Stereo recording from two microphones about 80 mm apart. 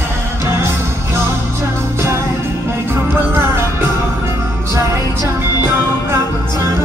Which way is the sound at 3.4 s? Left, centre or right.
Right.